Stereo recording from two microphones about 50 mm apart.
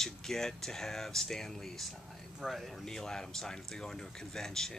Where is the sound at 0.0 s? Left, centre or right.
Centre.